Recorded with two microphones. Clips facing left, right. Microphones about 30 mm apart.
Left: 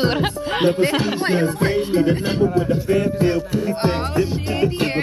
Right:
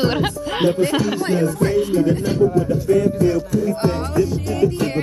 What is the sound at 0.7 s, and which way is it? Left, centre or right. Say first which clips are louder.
Music: right 1 dB; left.